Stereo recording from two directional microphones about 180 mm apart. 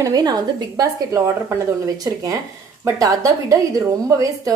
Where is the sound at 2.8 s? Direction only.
20° right (ahead or behind).